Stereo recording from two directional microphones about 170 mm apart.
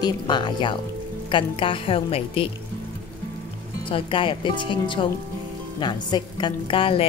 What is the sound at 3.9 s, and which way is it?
A woman's voice, 30° left (ahead or behind).